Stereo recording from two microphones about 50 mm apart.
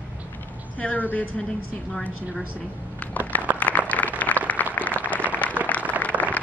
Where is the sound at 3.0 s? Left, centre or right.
Left.